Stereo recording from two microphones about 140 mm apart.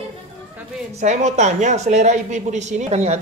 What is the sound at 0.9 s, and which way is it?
A woman's voice, 55° right (ahead or behind).